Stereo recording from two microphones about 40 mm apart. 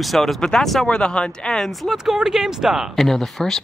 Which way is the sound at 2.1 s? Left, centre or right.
Centre.